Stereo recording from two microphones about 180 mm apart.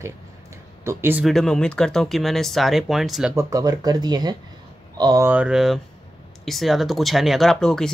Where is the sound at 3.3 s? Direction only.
20° right (ahead or behind); by 7.9 s 5° left (ahead or behind).